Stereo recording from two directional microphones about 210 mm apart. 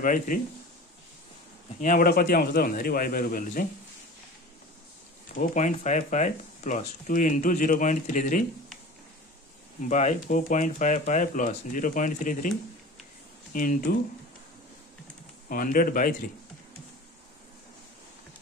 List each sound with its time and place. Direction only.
0.0 s speech: 40° left (ahead or behind)
1.8 s a man's voice: 40° left (ahead or behind)
5.3 s speech: 35° left (ahead or behind)
9.8 s speech: 35° left (ahead or behind)
15.5 s speech: 40° left (ahead or behind)